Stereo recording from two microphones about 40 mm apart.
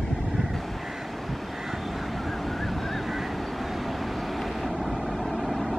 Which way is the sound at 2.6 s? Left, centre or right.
Centre.